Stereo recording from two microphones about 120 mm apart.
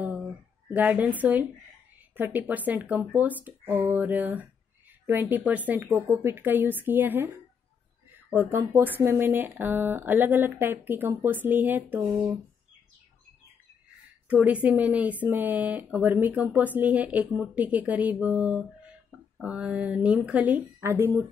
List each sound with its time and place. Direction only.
0.7 s speech: 15° right (ahead or behind)
8.5 s speech: 20° right (ahead or behind)
14.3 s speech: 15° right (ahead or behind)